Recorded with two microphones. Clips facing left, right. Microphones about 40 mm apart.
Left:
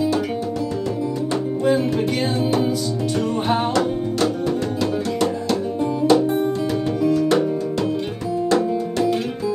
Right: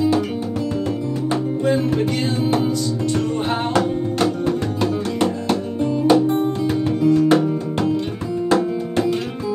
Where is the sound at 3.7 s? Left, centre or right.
Right.